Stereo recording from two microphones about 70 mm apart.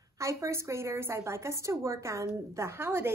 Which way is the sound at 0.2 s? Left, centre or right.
Right.